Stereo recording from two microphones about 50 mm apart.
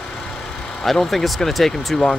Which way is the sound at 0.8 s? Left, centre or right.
Centre.